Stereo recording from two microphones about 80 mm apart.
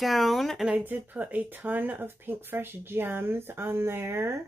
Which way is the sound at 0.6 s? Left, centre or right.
Centre.